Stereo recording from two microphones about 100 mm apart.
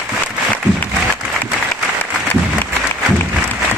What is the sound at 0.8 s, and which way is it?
Applause, 15° left (ahead or behind).